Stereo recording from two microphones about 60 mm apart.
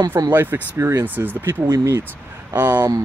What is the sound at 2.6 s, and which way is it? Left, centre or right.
Speech, right.